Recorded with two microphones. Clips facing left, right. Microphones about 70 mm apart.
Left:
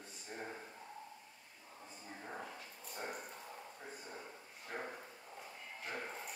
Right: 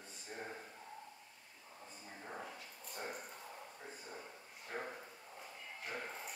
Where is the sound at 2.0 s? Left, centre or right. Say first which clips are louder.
Left 1 dB; centre.